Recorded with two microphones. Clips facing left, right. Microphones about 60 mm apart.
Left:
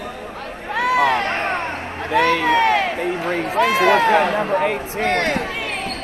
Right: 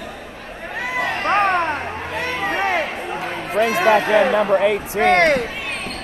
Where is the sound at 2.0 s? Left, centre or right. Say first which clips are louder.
Left 7 dB; left.